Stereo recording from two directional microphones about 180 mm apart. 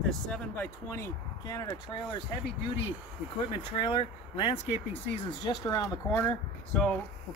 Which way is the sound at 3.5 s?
30° left (ahead or behind).